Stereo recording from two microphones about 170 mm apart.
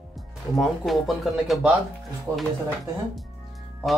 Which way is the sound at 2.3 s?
15° right (ahead or behind).